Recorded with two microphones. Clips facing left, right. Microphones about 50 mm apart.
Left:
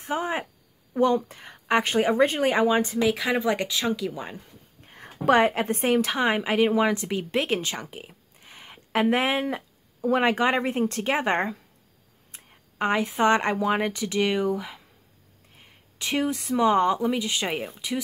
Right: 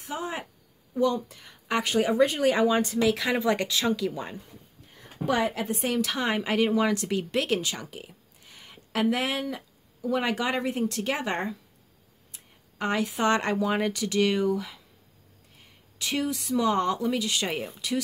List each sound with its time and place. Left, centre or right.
0.0 s a sound: left
0.9 s speech: left; by 4.1 s centre
4.1 s speech: centre
4.8 s a sound: left
5.9 s speech: left
6.2 s speech: centre